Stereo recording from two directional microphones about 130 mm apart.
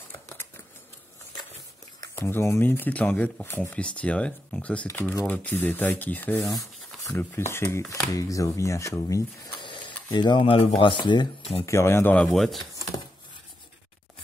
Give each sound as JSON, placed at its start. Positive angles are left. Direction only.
{"t": 0.1, "sound": "a sound", "side_deg": 15}
{"t": 2.1, "sound": "speech", "side_deg": 20}
{"t": 9.6, "sound": "a sound", "side_deg": 40}
{"t": 10.8, "sound": "speech", "side_deg": 40}
{"t": 11.6, "sound": "speech", "side_deg": 20}
{"t": 12.3, "sound": "speech", "side_deg": 0}